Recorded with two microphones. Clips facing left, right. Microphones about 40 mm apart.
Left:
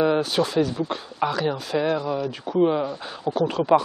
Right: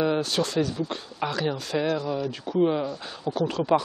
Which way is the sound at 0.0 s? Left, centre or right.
Centre.